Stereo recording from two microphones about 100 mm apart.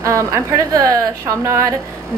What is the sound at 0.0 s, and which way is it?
A woman's voice, 30° right (ahead or behind).